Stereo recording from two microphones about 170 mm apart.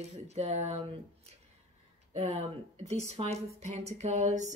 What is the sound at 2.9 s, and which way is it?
A woman's voice, 40° right (ahead or behind).